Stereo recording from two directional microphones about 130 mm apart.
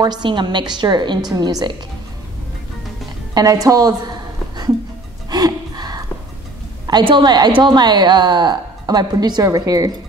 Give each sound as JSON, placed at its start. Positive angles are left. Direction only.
{"t": 0.0, "sound": "a woman's voice", "side_deg": -35}
{"t": 3.6, "sound": "a woman's voice", "side_deg": -30}
{"t": 5.3, "sound": "gasp", "side_deg": -30}
{"t": 6.9, "sound": "a woman's voice", "side_deg": -35}